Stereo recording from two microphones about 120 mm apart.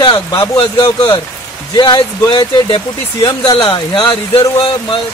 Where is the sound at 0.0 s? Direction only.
30° left (ahead or behind).